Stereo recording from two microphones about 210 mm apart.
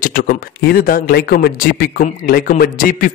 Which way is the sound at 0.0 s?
40° left (ahead or behind).